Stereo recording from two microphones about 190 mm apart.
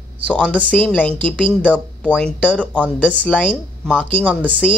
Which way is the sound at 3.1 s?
5° left (ahead or behind).